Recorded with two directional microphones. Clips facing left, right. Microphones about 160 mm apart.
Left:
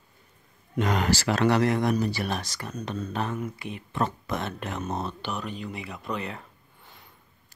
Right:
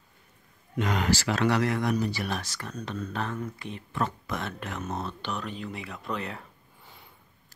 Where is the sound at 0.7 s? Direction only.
40° left (ahead or behind).